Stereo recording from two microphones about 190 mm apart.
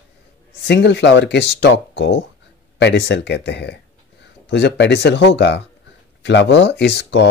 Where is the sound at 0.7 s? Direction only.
65° left (ahead or behind).